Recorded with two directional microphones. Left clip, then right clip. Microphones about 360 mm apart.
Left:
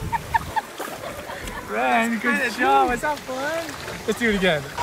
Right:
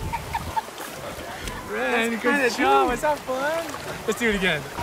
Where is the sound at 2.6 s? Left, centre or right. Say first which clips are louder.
Left 3 dB; centre.